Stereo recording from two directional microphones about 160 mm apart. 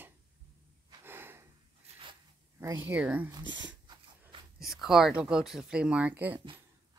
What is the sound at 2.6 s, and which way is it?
Speech, 15° right (ahead or behind).